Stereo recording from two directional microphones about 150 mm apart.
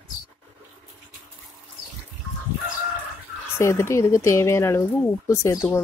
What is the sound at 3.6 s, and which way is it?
Speech, 20° left (ahead or behind).